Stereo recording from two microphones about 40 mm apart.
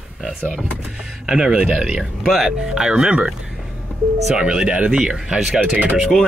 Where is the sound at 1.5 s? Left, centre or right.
Right.